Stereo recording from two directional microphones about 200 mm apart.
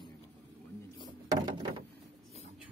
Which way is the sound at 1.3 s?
20° right (ahead or behind).